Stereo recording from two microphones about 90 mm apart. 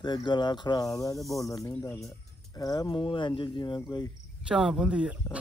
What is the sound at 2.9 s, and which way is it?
Speech, 65° left (ahead or behind).